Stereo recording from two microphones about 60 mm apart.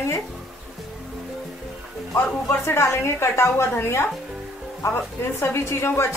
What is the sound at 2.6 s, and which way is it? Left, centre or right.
A woman's voice, left.